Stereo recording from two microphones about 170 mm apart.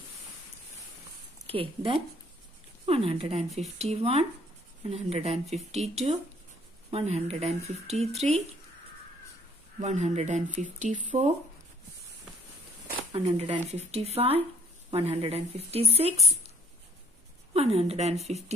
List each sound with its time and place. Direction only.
1.5 s speech: 30° right (ahead or behind)
9.8 s speech: 45° right (ahead or behind)
13.1 s speech: 35° right (ahead or behind)
17.6 s speech: 35° right (ahead or behind)